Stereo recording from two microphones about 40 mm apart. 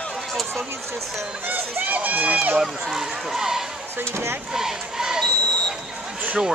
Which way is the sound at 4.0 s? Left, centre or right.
Right.